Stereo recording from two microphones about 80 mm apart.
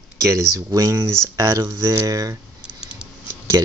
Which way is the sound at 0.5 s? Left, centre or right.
Right.